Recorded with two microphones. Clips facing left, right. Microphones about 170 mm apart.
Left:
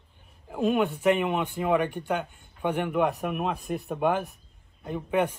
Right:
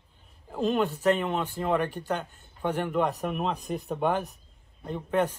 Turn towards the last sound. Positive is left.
turn(degrees=10)  # may be behind; listen again after turning